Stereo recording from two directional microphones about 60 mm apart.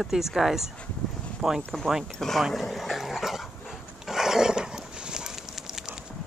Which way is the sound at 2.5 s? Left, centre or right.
Centre.